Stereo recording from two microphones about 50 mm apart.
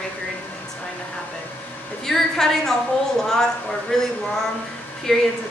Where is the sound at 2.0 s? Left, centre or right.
Centre.